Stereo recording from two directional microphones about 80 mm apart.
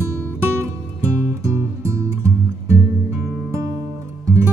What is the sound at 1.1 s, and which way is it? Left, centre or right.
Music, right.